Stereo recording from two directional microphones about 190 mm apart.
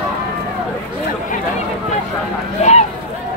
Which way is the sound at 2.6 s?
35° left (ahead or behind).